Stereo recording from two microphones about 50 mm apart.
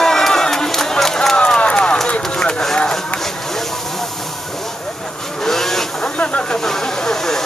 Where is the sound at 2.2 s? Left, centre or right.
Centre.